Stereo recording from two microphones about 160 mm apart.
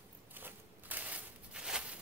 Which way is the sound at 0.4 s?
10° right (ahead or behind).